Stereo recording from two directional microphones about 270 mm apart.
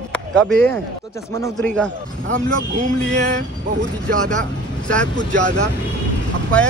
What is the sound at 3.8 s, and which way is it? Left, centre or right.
Speech, right.